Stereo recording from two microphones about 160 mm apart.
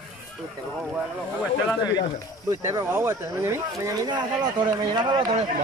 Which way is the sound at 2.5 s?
20° right (ahead or behind).